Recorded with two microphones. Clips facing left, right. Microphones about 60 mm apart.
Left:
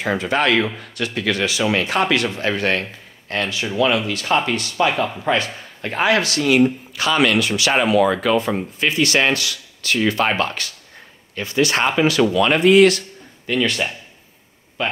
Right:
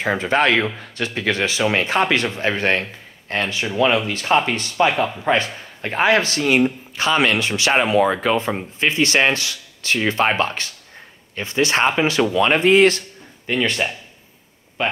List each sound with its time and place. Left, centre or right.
0.0 s speech: right